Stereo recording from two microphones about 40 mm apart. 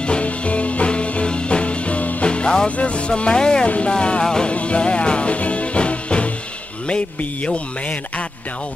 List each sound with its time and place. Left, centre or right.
0.0 s music: left
2.2 s music: left
2.8 s speech: left
3.6 s speech: left
3.9 s music: left
4.5 s music: left